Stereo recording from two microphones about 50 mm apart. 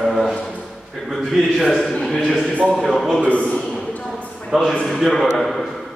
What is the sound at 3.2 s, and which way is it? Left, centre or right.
Speech, left.